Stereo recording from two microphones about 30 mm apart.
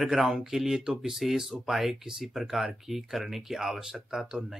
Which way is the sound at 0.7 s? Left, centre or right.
Right.